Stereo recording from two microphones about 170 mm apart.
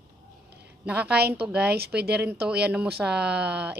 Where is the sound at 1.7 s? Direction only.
70° right (ahead or behind).